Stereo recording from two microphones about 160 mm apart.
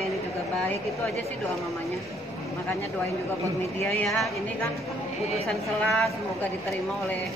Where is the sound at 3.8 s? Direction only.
Centre (ahead or behind).